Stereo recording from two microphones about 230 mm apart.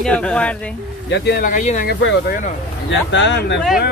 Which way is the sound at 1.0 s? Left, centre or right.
Left.